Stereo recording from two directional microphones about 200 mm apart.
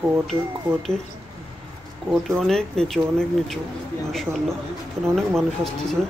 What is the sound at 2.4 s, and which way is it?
Speech, 5° left (ahead or behind).